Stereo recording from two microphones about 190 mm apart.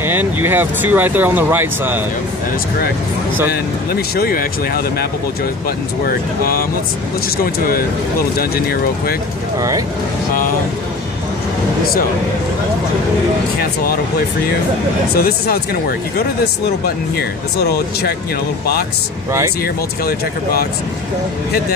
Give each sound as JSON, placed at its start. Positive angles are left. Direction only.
{"t": 0.0, "sound": "speech", "side_deg": -10}
{"t": 3.9, "sound": "speech", "side_deg": 55}
{"t": 6.0, "sound": "speech", "side_deg": 50}
{"t": 8.4, "sound": "speech", "side_deg": 55}
{"t": 9.6, "sound": "speech", "side_deg": -15}
{"t": 15.1, "sound": "speech", "side_deg": 55}
{"t": 19.6, "sound": "speech", "side_deg": 50}